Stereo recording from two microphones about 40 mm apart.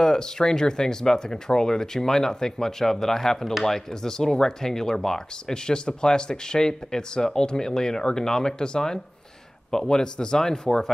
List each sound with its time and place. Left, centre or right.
0.0 s speech: centre